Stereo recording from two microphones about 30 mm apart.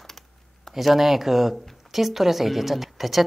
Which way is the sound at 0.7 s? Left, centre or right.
Centre.